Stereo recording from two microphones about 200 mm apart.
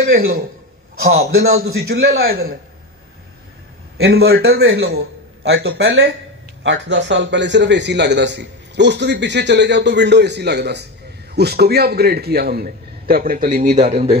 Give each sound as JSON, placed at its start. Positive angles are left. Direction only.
{"t": 1.4, "sound": "a man's voice", "side_deg": -50}
{"t": 4.0, "sound": "a man's voice", "side_deg": -55}
{"t": 13.6, "sound": "speech", "side_deg": -35}